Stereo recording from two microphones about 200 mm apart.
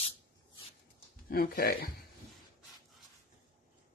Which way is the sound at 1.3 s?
50° left (ahead or behind).